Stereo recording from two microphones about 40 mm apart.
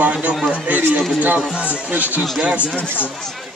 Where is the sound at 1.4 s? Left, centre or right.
Right.